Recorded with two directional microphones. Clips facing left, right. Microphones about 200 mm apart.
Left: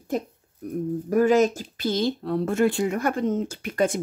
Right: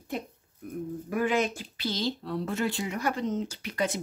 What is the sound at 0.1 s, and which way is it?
Speech, 45° left (ahead or behind).